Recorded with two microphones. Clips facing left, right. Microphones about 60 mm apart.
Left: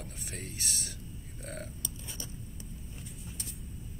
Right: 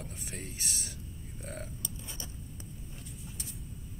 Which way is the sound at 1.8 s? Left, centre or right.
Right.